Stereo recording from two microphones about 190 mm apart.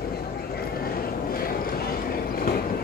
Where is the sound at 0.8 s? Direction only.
50° left (ahead or behind).